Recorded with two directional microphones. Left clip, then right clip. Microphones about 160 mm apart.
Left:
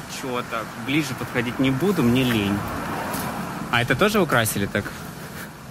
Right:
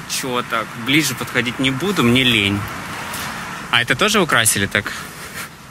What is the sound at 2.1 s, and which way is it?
Speech, 20° right (ahead or behind).